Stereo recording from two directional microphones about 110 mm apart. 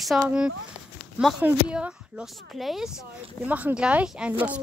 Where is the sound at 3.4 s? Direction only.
15° right (ahead or behind).